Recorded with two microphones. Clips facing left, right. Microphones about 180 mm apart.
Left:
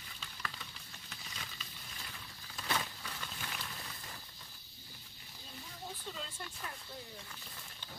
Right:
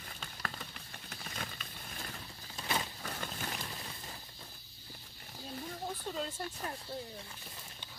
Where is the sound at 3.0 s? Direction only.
50° right (ahead or behind).